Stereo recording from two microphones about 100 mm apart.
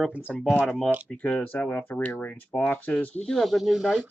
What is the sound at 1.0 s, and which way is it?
Speech, 15° left (ahead or behind).